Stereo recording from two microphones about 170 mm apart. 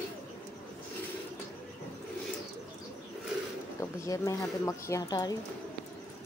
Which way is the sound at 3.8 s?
20° left (ahead or behind).